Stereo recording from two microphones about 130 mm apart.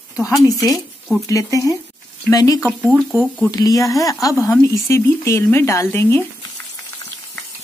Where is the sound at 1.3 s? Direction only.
25° left (ahead or behind).